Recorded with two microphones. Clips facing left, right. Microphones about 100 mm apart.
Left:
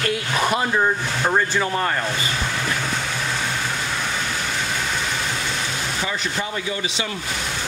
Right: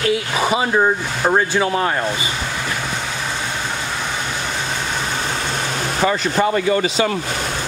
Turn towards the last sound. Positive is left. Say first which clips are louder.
# right 10 dB
turn(degrees=-55)  # may be behind; listen again after turning